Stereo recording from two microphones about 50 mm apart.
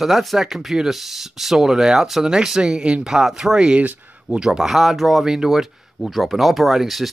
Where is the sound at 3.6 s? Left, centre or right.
Right.